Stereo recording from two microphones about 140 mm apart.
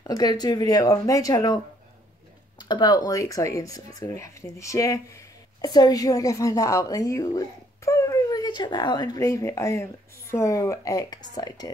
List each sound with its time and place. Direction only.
0.0 s speech: 30° left (ahead or behind)
2.6 s speech: 30° left (ahead or behind)